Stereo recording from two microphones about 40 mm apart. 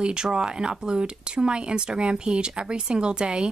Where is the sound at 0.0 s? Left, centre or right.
Right.